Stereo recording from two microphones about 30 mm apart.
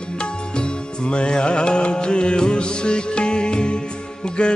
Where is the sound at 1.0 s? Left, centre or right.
Left.